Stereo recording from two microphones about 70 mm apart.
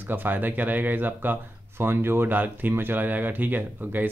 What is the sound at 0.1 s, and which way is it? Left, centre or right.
Speech, right.